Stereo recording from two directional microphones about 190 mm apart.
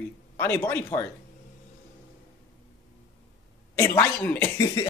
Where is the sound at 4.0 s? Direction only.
15° left (ahead or behind).